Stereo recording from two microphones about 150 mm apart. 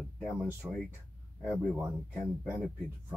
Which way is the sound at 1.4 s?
Centre (ahead or behind).